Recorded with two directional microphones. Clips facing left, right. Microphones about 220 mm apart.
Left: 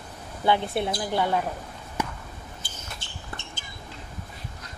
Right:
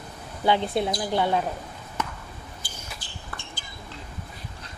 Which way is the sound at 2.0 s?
10° left (ahead or behind).